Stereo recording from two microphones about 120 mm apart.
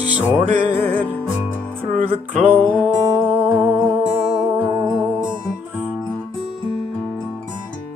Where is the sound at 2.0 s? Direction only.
70° right (ahead or behind).